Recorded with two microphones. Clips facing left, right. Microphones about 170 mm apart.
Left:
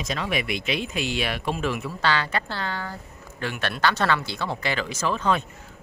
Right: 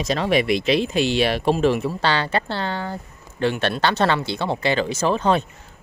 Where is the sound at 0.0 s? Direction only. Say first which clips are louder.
Right 8 dB; 35° right (ahead or behind).